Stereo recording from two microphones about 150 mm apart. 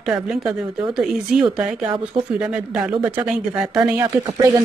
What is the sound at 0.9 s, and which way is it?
Speech, 5° right (ahead or behind).